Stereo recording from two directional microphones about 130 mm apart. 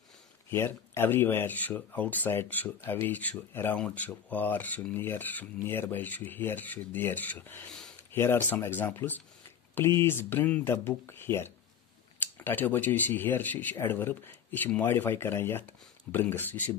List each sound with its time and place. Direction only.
0.5 s speech: 20° left (ahead or behind)